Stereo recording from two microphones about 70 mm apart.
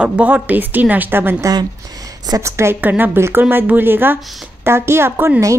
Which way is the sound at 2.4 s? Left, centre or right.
Right.